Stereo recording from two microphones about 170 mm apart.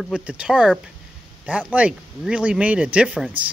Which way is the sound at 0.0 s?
5° right (ahead or behind).